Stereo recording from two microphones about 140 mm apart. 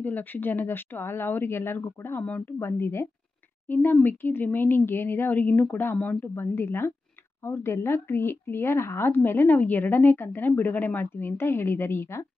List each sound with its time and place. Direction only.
0.0 s speech: 15° left (ahead or behind)